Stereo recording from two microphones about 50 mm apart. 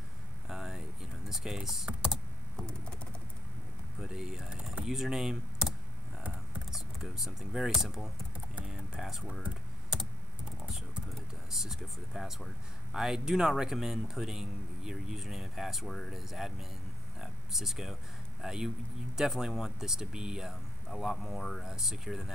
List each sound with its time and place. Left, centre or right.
0.5 s vehicle: centre
1.3 s a man's voice: centre
1.9 s typing: centre
4.0 s a man's voice: centre
8.6 s a sound: centre
9.4 s computer keyboard: centre
11.5 s a man's voice: centre
17.2 s a sound: centre
18.4 s a man's voice: centre
21.6 s a man's voice: centre